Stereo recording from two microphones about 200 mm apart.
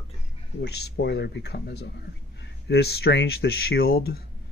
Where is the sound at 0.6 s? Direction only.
55° left (ahead or behind).